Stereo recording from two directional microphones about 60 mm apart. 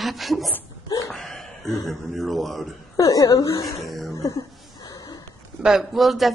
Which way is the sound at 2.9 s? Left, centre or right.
Left.